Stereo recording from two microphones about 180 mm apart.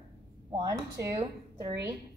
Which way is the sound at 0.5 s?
20° right (ahead or behind).